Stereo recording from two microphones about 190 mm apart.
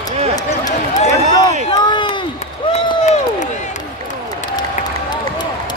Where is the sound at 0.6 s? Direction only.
35° left (ahead or behind).